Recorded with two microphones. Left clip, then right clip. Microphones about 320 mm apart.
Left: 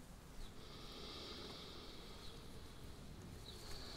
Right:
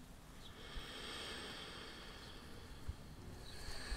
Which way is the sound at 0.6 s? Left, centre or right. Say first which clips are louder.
Right 5 dB; right.